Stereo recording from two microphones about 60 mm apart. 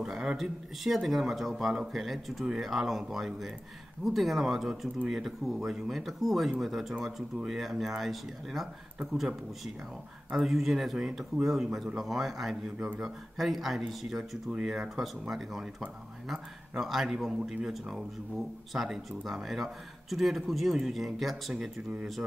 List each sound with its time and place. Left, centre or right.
0.0 s speech: centre
10.3 s speech: centre
12.8 s speech: centre
13.4 s speech: centre